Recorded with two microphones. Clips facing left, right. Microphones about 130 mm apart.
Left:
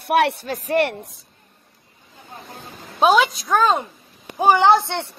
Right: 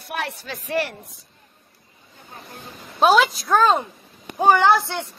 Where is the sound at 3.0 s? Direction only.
Centre (ahead or behind).